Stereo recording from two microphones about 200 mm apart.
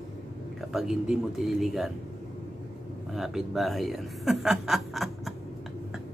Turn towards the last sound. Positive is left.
turn(degrees=0)  # may be behind; listen again after turning